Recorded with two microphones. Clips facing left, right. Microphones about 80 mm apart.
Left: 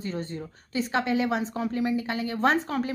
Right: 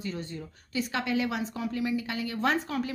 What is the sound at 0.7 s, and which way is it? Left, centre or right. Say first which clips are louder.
A woman's voice: left 4 dB; left.